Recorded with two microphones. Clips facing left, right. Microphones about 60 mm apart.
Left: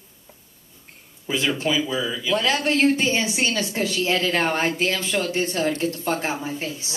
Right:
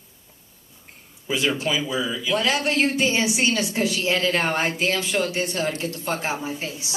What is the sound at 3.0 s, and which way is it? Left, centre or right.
A woman's voice, right.